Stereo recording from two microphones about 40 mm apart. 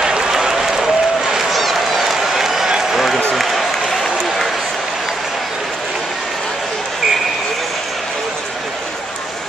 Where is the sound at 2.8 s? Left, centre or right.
Centre.